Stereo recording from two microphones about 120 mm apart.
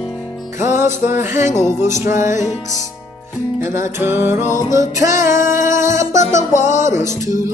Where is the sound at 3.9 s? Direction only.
20° right (ahead or behind).